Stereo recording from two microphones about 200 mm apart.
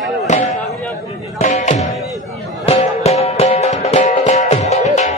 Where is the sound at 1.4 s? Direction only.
35° left (ahead or behind).